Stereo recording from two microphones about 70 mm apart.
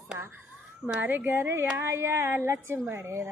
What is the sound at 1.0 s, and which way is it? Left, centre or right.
Speech, right.